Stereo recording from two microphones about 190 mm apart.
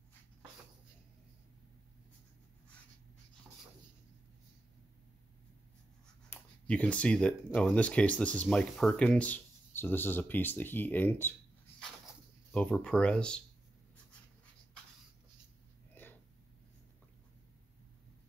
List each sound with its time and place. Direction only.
6.3 s speech: 5° left (ahead or behind)
12.5 s speech: 5° left (ahead or behind)
15.9 s a sound: 10° left (ahead or behind)